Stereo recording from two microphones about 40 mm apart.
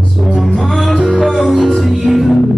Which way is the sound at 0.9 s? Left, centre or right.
Centre.